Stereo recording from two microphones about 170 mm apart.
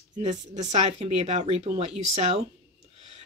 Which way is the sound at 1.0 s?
40° right (ahead or behind).